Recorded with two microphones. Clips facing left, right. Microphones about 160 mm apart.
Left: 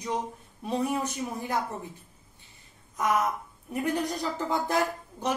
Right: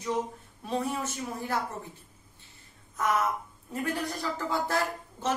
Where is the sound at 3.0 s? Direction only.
15° left (ahead or behind).